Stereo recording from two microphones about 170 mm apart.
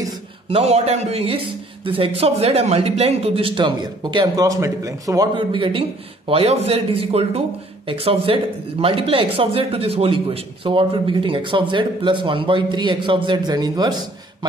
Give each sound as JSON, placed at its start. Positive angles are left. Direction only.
{"t": 0.5, "sound": "a man's voice", "side_deg": -35}